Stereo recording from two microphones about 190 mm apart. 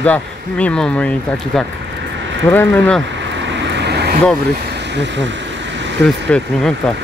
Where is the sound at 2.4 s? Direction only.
10° left (ahead or behind).